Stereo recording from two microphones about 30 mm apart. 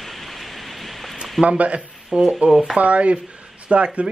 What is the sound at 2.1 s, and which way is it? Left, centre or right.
Speech, right.